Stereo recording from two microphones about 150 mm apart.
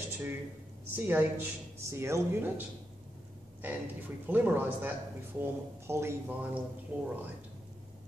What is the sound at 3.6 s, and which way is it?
A man's voice, 10° right (ahead or behind).